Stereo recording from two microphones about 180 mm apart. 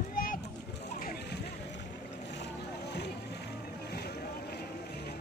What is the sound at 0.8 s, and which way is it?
Splash, 60° left (ahead or behind).